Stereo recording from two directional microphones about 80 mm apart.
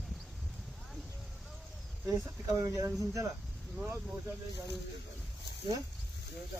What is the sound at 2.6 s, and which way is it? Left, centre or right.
Speech, right.